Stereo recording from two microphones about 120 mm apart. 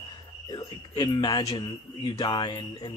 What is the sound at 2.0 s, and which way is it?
Speech, 45° left (ahead or behind).